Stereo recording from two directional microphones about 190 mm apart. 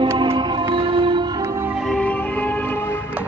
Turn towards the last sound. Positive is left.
turn(degrees=5)  # may be behind; listen again after turning